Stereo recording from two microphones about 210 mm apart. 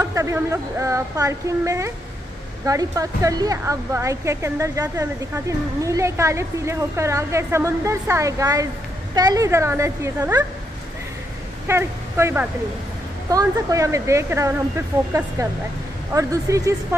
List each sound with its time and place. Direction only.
0.0 s a woman's voice: 15° right (ahead or behind)
11.6 s a woman's voice: 10° right (ahead or behind)
16.1 s a woman's voice: 15° right (ahead or behind)